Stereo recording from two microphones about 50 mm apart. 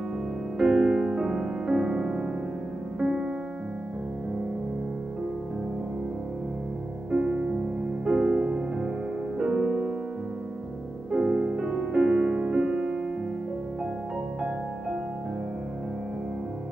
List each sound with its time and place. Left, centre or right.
0.6 s music: centre
7.1 s music: centre
11.1 s music: centre